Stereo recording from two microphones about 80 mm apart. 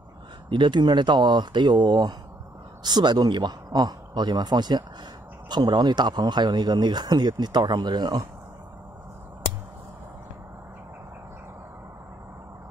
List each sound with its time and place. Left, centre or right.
0.5 s speech: right